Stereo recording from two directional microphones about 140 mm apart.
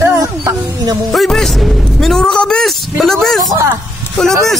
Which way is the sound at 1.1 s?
Centre (ahead or behind).